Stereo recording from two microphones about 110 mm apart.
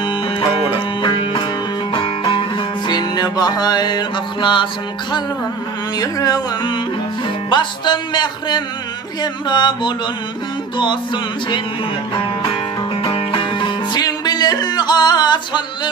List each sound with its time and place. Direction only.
0.0 s music: 45° left (ahead or behind)
1.9 s music: 55° left (ahead or behind)
5.9 s music: 35° left (ahead or behind)
13.0 s music: 50° left (ahead or behind)